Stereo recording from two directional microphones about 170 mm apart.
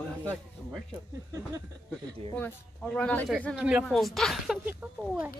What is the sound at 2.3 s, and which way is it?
Speech, 10° left (ahead or behind).